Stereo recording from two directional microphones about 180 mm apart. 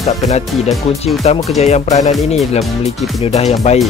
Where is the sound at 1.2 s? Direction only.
35° left (ahead or behind).